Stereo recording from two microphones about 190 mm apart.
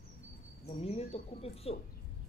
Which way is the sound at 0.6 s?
35° left (ahead or behind).